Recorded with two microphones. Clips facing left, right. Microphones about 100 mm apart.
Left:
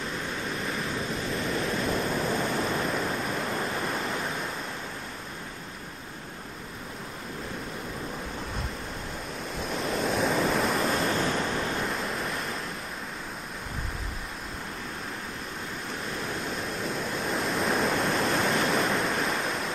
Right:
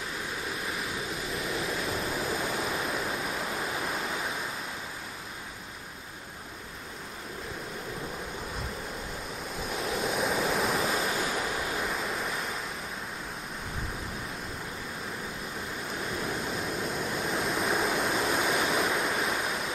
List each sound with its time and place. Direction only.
0.6 s pink noise: 5° right (ahead or behind)
9.6 s waves: centre (ahead or behind)
16.1 s waves: 5° right (ahead or behind)